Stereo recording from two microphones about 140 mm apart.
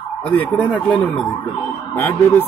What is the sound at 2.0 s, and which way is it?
Speech, 15° left (ahead or behind).